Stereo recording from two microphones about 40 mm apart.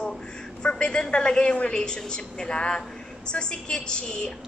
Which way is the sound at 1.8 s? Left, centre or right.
Centre.